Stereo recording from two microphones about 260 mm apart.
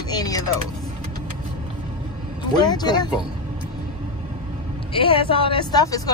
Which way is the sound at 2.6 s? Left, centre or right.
Centre.